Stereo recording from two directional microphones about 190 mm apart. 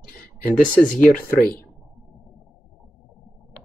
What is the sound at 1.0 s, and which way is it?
Speech, 45° left (ahead or behind).